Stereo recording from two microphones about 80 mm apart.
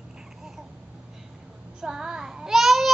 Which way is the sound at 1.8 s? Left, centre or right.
Centre.